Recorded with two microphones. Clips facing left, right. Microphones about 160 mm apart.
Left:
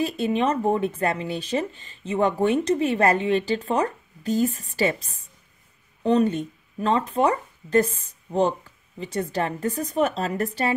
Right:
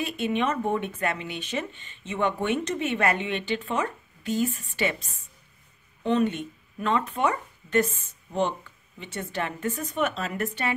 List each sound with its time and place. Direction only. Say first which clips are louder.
0.0 s speech: left 4 dB; 35° left (ahead or behind)